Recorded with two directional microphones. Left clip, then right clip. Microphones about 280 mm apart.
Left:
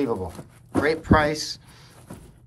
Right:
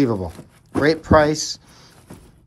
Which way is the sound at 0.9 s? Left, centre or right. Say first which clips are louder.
Right 6 dB; centre.